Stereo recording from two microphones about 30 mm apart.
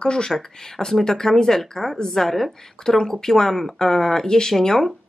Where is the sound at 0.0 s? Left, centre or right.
Left; by 2.5 s centre.